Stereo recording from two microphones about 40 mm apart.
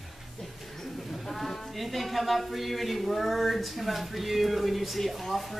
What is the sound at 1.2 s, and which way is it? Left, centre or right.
Speech, centre.